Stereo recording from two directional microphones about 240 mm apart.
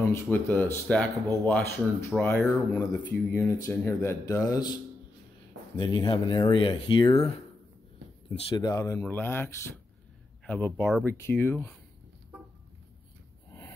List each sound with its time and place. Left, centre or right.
0.0 s speech: centre
5.8 s speech: centre
8.4 s speech: left
13.5 s a sound: centre